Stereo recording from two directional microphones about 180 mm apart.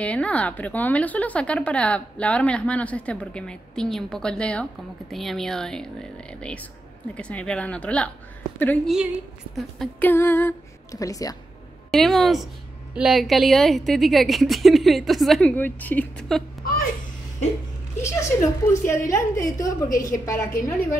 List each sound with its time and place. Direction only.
0.0 s a woman's voice: 5° left (ahead or behind)
7.2 s speech: 5° left (ahead or behind)
11.9 s a woman's voice: centre (ahead or behind)
16.6 s babbling: 50° left (ahead or behind)
18.0 s speech: 15° left (ahead or behind)